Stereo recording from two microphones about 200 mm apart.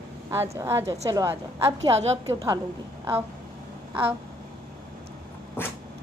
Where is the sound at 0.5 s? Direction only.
15° right (ahead or behind).